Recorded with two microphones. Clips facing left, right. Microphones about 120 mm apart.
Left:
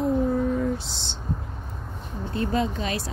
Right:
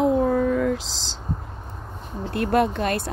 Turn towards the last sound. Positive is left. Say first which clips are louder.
# right 5 dB
turn(degrees=-55)  # may be behind; listen again after turning